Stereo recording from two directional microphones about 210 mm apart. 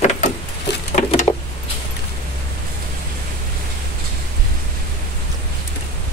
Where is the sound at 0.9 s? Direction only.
30° left (ahead or behind).